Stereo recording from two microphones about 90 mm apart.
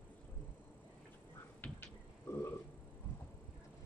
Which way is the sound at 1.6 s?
25° left (ahead or behind).